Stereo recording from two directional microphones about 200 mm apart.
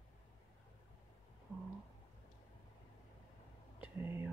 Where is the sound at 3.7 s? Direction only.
10° right (ahead or behind).